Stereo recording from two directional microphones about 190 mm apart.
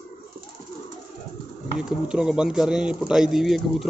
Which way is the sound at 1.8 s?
5° right (ahead or behind).